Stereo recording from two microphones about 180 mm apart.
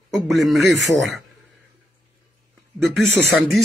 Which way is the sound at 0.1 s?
Centre (ahead or behind).